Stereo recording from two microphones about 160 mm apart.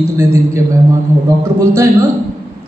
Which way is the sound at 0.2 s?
20° right (ahead or behind).